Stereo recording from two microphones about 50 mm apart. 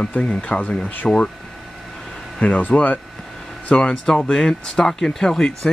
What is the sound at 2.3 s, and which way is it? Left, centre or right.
Speech, left.